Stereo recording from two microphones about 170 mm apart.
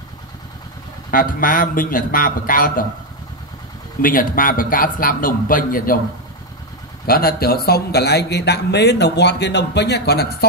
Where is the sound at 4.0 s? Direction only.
55° left (ahead or behind).